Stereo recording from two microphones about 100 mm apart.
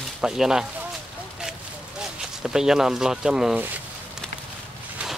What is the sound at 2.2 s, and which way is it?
Speech, 5° right (ahead or behind).